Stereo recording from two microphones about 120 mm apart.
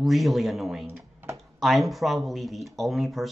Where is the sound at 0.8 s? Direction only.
20° right (ahead or behind).